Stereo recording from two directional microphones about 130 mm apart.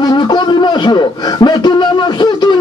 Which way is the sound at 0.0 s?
35° left (ahead or behind).